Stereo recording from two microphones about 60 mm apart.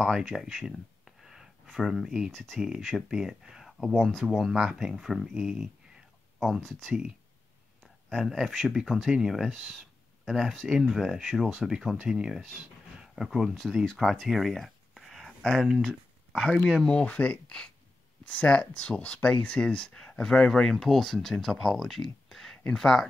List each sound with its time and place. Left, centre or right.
0.0 s speech: centre
2.3 s speech: centre
3.1 s speech: centre
4.1 s speech: centre
4.4 s speech: centre
6.4 s speech: centre
8.1 s speech: centre
13.8 s a sound: centre
15.6 s a sound: centre
16.8 s speech: centre